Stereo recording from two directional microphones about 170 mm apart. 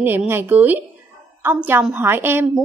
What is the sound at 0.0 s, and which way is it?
A woman's voice, 10° right (ahead or behind).